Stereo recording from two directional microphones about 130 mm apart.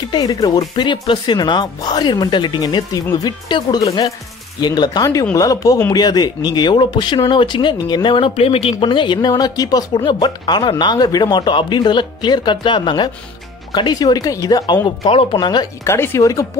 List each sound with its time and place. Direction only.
0.0 s speech: 30° left (ahead or behind)
15.8 s speech: 20° left (ahead or behind)